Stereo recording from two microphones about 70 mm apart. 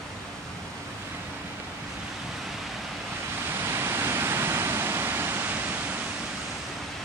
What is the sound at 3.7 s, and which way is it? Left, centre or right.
Waterfall, right.